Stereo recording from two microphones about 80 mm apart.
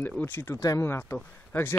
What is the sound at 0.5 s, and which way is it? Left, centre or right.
Speech, left.